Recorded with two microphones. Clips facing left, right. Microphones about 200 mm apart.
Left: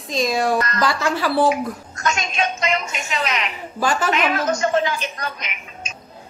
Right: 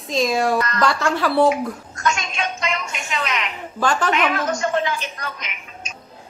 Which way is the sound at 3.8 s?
10° left (ahead or behind).